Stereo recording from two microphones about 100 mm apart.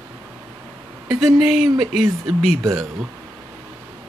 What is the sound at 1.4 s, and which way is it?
Speech, 5° right (ahead or behind).